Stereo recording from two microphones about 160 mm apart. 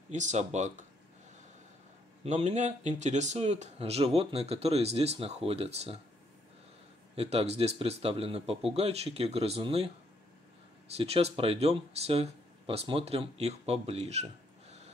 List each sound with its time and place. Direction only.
0.1 s speech: 50° right (ahead or behind)
2.2 s speech: 45° right (ahead or behind)
7.2 s speech: 40° right (ahead or behind)
11.0 s speech: 40° right (ahead or behind)